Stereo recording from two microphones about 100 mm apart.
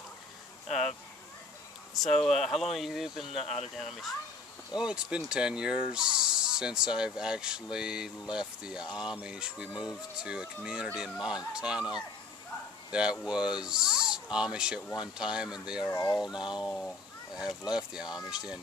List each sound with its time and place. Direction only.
0.7 s speech: 5° left (ahead or behind)
2.0 s speech: 5° left (ahead or behind)
3.3 s speech: 85° left
3.7 s speech: centre (ahead or behind)
12.9 s speech: 5° right (ahead or behind)